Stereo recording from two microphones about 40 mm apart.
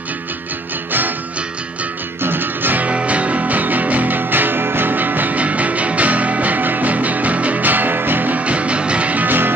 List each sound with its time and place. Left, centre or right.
2.2 s music: right
2.8 s music: right
8.5 s music: right